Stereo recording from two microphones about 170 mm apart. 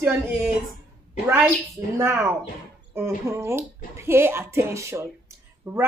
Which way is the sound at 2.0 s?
15° right (ahead or behind).